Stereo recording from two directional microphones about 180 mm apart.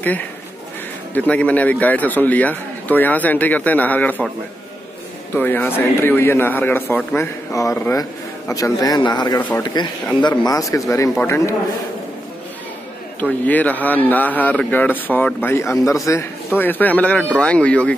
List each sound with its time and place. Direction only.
0.0 s a man's voice: 10° left (ahead or behind)
5.3 s a man's voice: 10° left (ahead or behind)
13.2 s a man's voice: 10° left (ahead or behind)